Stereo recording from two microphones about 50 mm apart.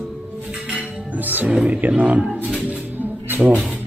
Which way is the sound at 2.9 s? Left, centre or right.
Right.